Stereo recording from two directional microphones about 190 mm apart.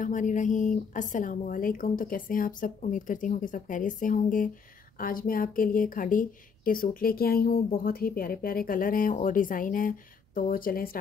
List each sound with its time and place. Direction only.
0.0 s speech: 40° left (ahead or behind)